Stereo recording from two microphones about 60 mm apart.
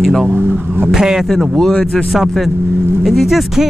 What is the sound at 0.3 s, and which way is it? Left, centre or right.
Speech, right.